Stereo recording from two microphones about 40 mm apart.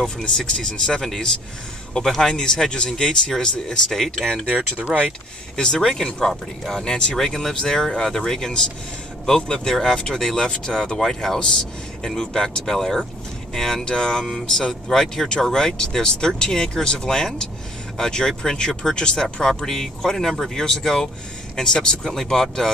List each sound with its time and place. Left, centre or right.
0.5 s speech: left
4.3 s speech: right
5.6 s speech: centre